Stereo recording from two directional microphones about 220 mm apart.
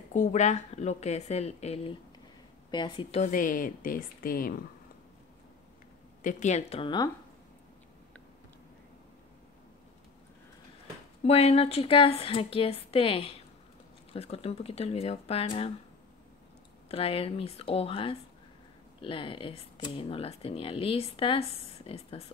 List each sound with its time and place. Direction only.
0.1 s a woman's voice: 35° left (ahead or behind)
6.2 s speech: 30° left (ahead or behind)
11.2 s speech: 30° left (ahead or behind)
16.9 s speech: 25° left (ahead or behind)